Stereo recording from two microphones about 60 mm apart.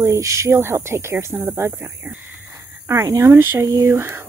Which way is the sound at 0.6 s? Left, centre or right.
Right.